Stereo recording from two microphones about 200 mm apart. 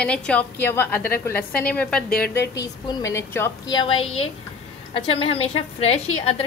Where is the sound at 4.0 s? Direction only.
85° left.